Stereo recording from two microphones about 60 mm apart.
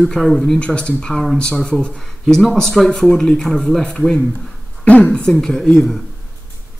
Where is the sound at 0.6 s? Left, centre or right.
Centre.